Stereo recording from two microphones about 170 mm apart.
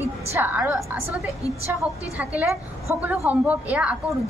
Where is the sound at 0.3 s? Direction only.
10° right (ahead or behind).